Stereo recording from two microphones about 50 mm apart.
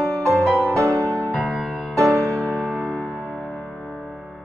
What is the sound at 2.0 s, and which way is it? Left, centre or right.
Music, right.